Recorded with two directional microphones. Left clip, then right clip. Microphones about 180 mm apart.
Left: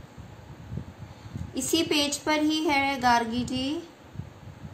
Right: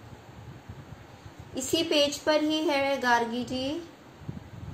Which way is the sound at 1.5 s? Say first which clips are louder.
Even; 45° left (ahead or behind).